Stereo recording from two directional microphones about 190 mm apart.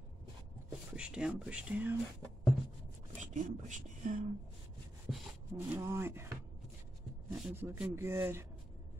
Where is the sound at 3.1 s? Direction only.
40° right (ahead or behind).